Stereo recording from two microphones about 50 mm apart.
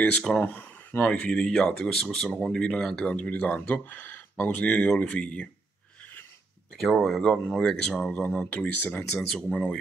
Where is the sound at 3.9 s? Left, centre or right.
Left.